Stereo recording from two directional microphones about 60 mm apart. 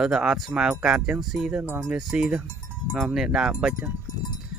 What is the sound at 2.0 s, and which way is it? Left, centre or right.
Speech, centre.